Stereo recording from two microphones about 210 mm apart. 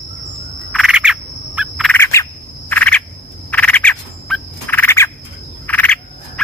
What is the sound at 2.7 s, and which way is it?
Frog, 5° left (ahead or behind).